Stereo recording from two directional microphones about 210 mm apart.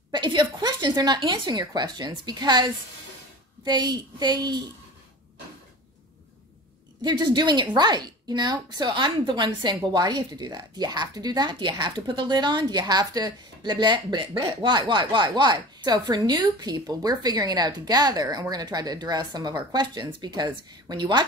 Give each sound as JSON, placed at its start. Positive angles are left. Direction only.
{"t": 0.1, "sound": "a woman's voice", "side_deg": -20}
{"t": 7.0, "sound": "a woman's voice", "side_deg": -20}